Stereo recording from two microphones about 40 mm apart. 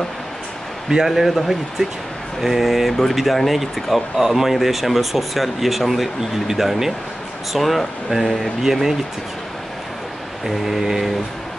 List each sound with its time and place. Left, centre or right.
0.8 s speech: centre
10.4 s speech: centre